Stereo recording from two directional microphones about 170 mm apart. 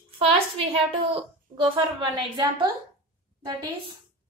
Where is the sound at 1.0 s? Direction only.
30° right (ahead or behind).